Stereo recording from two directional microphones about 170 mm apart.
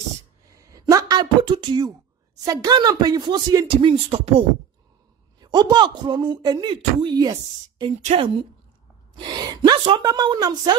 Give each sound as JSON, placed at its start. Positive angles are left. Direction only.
{"t": 0.6, "sound": "a sound", "side_deg": -20}
{"t": 2.4, "sound": "speech", "side_deg": -20}
{"t": 8.0, "sound": "a woman's voice", "side_deg": -35}